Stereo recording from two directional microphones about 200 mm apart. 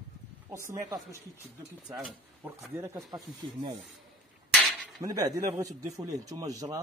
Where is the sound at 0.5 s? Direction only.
15° right (ahead or behind).